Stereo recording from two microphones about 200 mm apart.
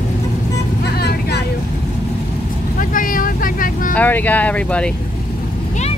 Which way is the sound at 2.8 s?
40° left (ahead or behind).